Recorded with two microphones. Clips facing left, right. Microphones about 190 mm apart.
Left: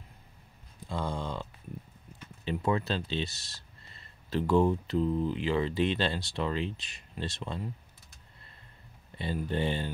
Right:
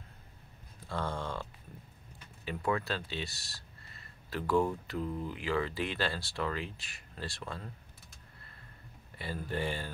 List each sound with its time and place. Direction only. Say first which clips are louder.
0.8 s a sound: left 2 dB; 15° left (ahead or behind)
2.4 s speech: left 4 dB; 25° left (ahead or behind)
9.2 s speech: left 5 dB; 20° left (ahead or behind)